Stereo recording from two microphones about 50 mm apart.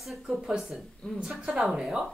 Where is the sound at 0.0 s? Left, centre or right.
Centre.